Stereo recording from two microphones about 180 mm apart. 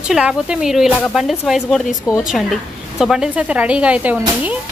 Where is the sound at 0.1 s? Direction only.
5° right (ahead or behind).